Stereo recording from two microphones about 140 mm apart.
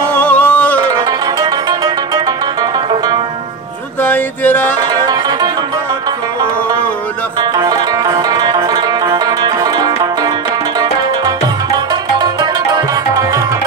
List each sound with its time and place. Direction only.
0.1 s music: 10° left (ahead or behind)
1.4 s music: 30° right (ahead or behind)
4.0 s music: 10° left (ahead or behind)
4.9 s music: 30° right (ahead or behind)
7.5 s music: 25° right (ahead or behind)
11.9 s tabla: 30° right (ahead or behind)